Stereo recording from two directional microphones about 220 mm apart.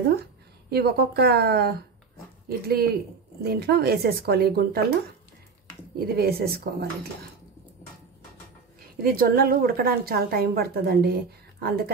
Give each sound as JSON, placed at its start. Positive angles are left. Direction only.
{"t": 0.7, "sound": "a woman's voice", "side_deg": -45}
{"t": 5.9, "sound": "a woman's voice", "side_deg": -45}
{"t": 9.0, "sound": "a woman's voice", "side_deg": -40}